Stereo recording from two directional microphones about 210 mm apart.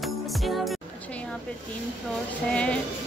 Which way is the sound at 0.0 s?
Centre (ahead or behind).